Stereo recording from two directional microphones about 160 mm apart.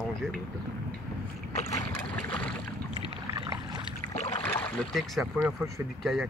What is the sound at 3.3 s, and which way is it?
Boat, 25° right (ahead or behind).